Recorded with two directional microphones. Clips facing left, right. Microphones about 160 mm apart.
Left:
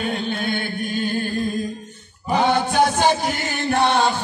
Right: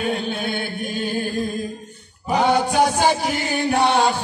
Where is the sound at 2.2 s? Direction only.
10° right (ahead or behind).